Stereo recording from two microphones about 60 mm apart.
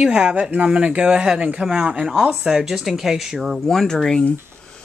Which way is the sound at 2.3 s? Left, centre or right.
Centre.